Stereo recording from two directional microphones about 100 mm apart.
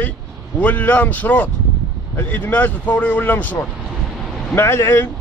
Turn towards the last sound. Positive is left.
turn(degrees=25)  # may be behind; listen again after turning